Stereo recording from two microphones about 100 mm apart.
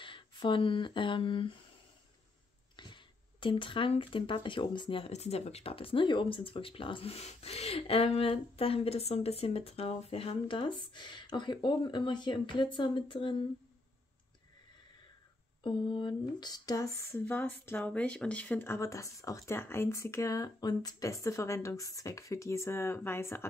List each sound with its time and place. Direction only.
0.0 s speech: 55° left (ahead or behind)
2.7 s speech: 50° left (ahead or behind)
15.6 s speech: 50° left (ahead or behind); by 23.4 s 25° left (ahead or behind)